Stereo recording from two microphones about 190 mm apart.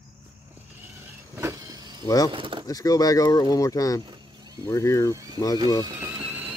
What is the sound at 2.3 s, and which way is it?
Speech, 25° right (ahead or behind).